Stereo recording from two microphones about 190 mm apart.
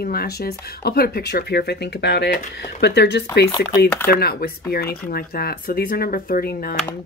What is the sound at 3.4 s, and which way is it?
Speech, 15° left (ahead or behind).